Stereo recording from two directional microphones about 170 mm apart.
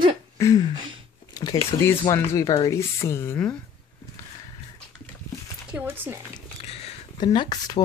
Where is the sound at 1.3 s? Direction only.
25° left (ahead or behind).